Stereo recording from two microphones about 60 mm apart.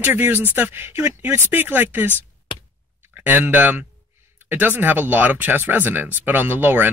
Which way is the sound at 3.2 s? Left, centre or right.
Right.